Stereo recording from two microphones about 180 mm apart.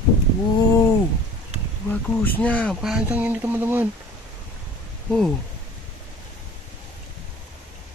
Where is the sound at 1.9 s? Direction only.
10° left (ahead or behind); by 3.9 s 10° right (ahead or behind).